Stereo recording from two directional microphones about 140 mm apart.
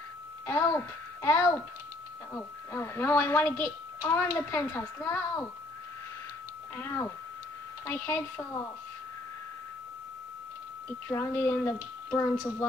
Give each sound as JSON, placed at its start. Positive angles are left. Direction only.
{"t": 0.5, "sound": "a child's voice", "side_deg": 15}
{"t": 6.8, "sound": "a woman's voice", "side_deg": 15}
{"t": 11.1, "sound": "speech", "side_deg": 20}